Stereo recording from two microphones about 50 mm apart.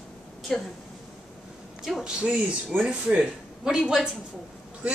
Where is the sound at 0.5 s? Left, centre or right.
Centre.